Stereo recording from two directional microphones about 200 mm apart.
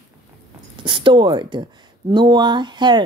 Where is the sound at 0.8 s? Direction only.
25° right (ahead or behind).